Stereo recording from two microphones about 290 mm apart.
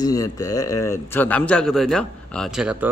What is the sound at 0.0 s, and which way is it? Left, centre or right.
A man's voice, centre.